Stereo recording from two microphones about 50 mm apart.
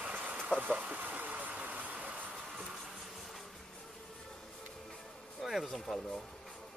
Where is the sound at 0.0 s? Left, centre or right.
Right.